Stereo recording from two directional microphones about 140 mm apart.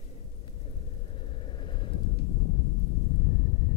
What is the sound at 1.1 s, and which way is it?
Vehicle, 35° left (ahead or behind).